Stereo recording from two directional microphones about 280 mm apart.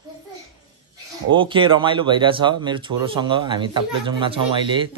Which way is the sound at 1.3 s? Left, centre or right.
Centre.